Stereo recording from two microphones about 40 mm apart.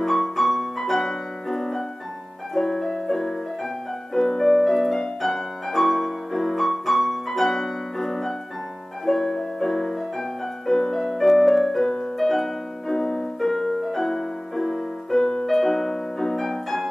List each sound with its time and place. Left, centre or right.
0.0 s music: centre
2.5 s piano: centre
4.1 s music: centre
12.9 s music: centre